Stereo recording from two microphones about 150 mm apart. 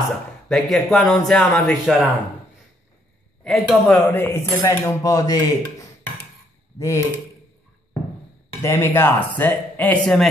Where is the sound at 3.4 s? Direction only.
5° left (ahead or behind); by 5.4 s 25° left (ahead or behind).